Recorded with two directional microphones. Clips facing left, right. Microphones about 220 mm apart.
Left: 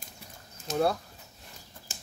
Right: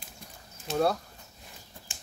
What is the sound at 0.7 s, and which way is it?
Speech, 40° left (ahead or behind).